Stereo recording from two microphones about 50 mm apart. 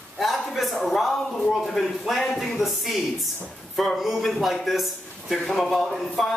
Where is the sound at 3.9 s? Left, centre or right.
Centre.